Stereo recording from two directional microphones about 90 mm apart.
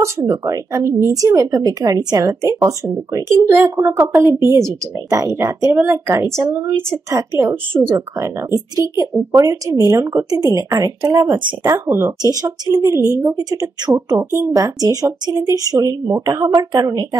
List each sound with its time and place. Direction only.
0.0 s speech: 30° right (ahead or behind)
8.7 s speech: 40° right (ahead or behind)
10.3 s speech: 40° right (ahead or behind)
11.0 s speech: 55° right (ahead or behind)
11.6 s speech: 30° right (ahead or behind)
12.4 s speech: 40° right (ahead or behind)
14.3 s speech: 35° right (ahead or behind)